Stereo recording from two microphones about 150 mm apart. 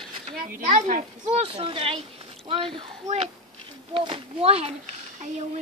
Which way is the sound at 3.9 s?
40° right (ahead or behind).